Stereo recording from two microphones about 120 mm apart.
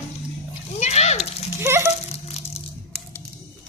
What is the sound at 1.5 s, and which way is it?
Speech, 20° right (ahead or behind).